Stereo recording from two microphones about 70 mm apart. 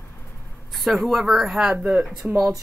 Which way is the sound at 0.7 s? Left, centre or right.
Centre.